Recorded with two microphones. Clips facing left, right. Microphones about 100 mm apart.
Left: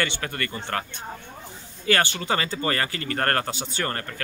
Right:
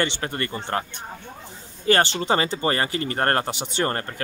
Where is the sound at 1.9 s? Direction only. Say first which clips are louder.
Right 3 dB; 30° right (ahead or behind).